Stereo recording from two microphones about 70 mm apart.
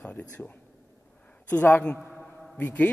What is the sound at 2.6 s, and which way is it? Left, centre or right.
Speech, left.